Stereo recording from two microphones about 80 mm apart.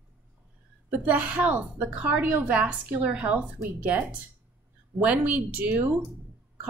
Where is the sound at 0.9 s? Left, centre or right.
Centre.